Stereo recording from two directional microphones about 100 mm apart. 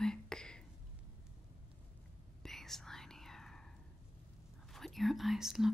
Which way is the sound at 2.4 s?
5° left (ahead or behind).